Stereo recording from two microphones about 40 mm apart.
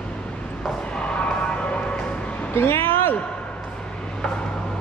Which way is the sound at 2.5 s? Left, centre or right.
Left.